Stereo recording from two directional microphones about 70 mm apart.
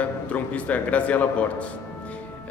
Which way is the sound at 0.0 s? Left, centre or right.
Left.